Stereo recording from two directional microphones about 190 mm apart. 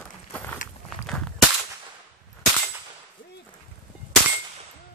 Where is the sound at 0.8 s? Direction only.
5° left (ahead or behind).